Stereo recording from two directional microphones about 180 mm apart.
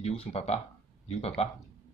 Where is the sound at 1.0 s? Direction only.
35° left (ahead or behind).